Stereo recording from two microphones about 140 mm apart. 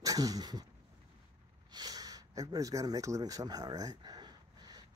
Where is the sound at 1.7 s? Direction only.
30° right (ahead or behind).